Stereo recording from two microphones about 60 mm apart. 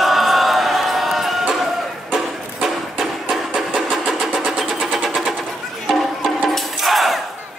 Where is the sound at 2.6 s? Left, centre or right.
Centre.